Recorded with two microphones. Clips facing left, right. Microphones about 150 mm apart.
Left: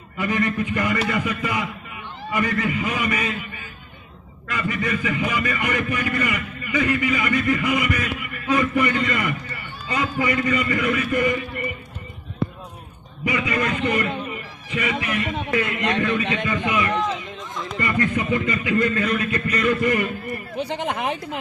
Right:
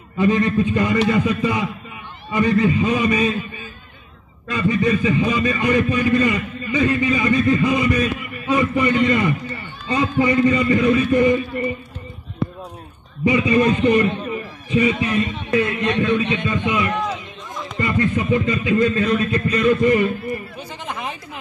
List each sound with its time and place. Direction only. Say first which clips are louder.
0.2 s a man's voice: right 6 dB; 20° right (ahead or behind)
4.5 s a man's voice: right 7 dB; 20° right (ahead or behind)
13.2 s a man's voice: right 7 dB; 25° right (ahead or behind)
20.5 s speech: left 5 dB; 65° left (ahead or behind)